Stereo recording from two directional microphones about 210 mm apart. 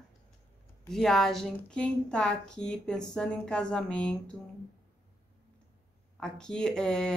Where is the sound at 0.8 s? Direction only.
Centre (ahead or behind).